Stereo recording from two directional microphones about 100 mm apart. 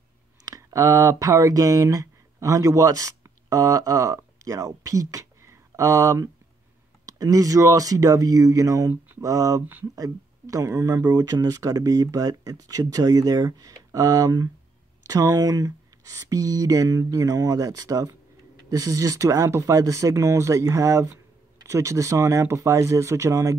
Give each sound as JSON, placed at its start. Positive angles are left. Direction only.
{"t": 0.5, "sound": "speech", "side_deg": -35}